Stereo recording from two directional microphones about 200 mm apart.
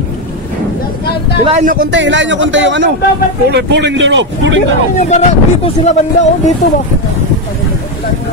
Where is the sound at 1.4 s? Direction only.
35° right (ahead or behind).